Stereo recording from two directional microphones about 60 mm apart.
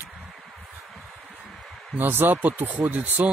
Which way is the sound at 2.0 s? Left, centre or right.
Right.